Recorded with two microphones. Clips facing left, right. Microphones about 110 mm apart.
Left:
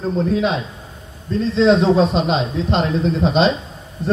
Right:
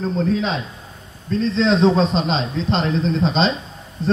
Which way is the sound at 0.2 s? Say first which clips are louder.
Left 3 dB; 10° left (ahead or behind).